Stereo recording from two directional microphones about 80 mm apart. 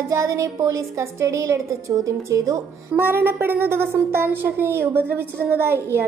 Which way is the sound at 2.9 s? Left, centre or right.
Right.